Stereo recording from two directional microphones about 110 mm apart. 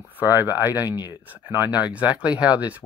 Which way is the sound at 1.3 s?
15° right (ahead or behind).